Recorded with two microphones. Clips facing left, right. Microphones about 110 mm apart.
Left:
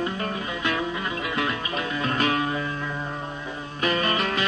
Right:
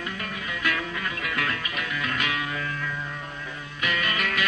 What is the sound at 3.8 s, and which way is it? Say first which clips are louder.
Music: left 4 dB; 35° left (ahead or behind).